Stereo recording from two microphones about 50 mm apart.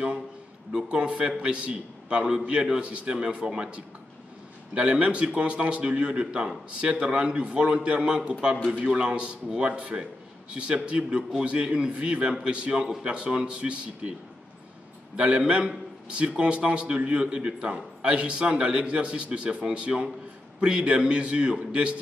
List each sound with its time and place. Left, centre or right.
1.0 s a man's voice: right
15.1 s a man's voice: right